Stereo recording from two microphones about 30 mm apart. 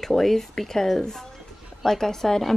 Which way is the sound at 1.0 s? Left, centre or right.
Left.